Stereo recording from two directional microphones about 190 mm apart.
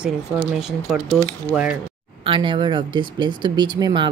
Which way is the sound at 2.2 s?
25° right (ahead or behind).